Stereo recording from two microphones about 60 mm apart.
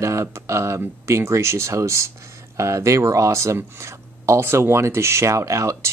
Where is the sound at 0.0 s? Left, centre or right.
Right.